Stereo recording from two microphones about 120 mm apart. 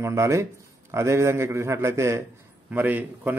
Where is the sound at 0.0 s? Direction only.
25° right (ahead or behind).